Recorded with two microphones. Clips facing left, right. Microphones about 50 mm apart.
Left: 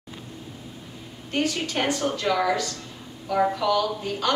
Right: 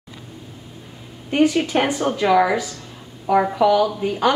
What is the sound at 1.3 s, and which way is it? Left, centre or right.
A woman's voice, centre.